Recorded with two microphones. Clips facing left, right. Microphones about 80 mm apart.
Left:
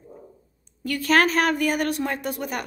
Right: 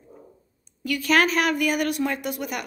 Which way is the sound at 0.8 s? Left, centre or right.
Left.